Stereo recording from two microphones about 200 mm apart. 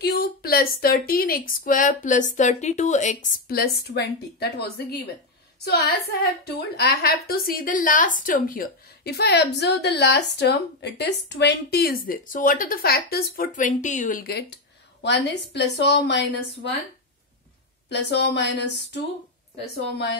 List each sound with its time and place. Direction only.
0.0 s a woman's voice: 50° left (ahead or behind)
15.0 s a woman's voice: 55° left (ahead or behind)
17.8 s a woman's voice: 60° left (ahead or behind)